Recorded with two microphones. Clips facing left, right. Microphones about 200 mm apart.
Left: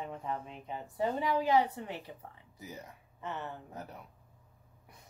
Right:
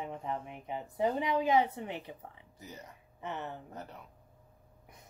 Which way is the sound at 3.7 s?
10° left (ahead or behind).